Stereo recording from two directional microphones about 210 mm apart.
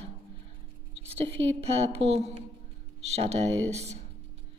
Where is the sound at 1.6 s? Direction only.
30° right (ahead or behind).